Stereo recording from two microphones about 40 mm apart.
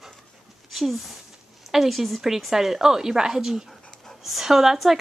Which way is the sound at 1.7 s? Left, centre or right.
Centre.